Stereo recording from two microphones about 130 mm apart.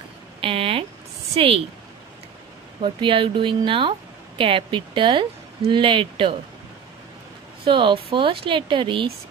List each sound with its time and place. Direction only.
0.4 s a sound: 45° right (ahead or behind)
1.3 s speech: 45° right (ahead or behind)
2.8 s speech: 40° right (ahead or behind)
7.6 s speech: 40° right (ahead or behind)